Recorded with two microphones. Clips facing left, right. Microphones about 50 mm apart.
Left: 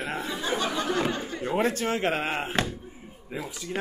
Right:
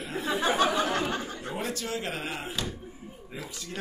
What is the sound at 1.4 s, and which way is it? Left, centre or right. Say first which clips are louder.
A man's voice: left 8 dB; left.